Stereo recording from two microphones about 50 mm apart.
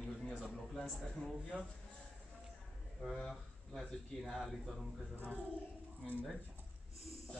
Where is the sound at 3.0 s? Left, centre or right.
Centre.